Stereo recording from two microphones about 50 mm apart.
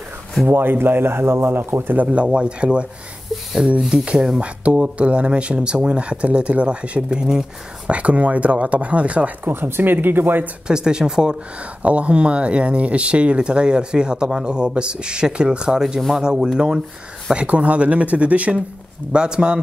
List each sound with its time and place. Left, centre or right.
0.5 s speech: right
2.2 s speech: right
3.9 s speech: centre
7.9 s speech: right
9.5 s speech: right
10.7 s speech: centre
11.8 s speech: right